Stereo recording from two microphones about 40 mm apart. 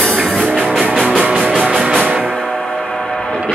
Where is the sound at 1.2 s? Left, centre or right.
Centre.